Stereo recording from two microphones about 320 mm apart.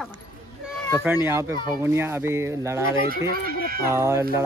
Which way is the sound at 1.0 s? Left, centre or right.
Centre.